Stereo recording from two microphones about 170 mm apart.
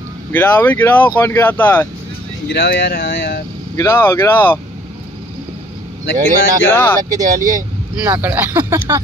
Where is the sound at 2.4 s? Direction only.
85° left.